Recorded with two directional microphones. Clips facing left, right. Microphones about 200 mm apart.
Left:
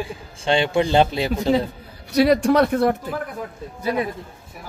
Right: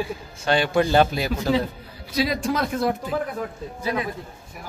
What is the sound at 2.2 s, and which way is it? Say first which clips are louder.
Speech: left 8 dB; 65° left (ahead or behind).